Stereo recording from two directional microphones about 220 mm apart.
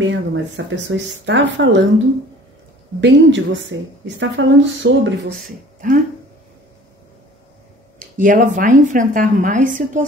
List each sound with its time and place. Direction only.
0.1 s a woman's voice: 60° right (ahead or behind)
3.0 s a woman's voice: 55° right (ahead or behind)
5.8 s a woman's voice: 35° right (ahead or behind)
8.2 s a woman's voice: 35° right (ahead or behind)